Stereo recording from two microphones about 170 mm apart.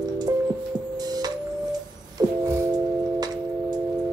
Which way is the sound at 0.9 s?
25° right (ahead or behind).